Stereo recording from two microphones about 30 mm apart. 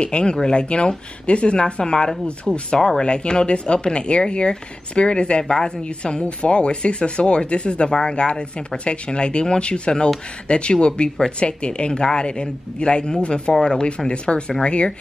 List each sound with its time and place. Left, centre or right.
0.0 s speech: left
2.5 s speech: centre
3.0 s speech: left
5.4 s speech: left